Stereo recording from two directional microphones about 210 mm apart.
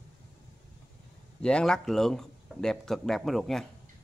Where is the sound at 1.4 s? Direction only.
5° left (ahead or behind).